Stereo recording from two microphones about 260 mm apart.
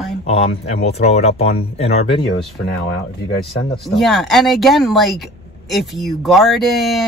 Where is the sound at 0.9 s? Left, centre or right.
Left.